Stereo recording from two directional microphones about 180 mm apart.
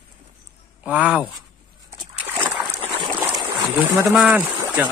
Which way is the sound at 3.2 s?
20° right (ahead or behind).